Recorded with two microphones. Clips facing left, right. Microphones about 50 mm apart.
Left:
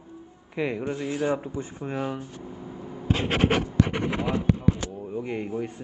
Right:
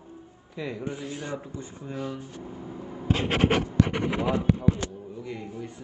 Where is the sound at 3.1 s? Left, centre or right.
Left.